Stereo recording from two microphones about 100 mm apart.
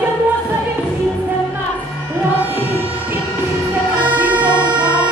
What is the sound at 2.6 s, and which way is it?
Music, 20° right (ahead or behind).